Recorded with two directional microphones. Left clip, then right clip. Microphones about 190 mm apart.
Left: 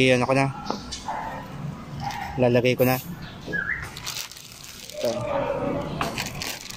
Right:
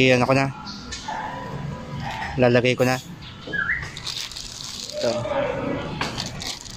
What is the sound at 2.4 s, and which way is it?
Mantra, 5° right (ahead or behind).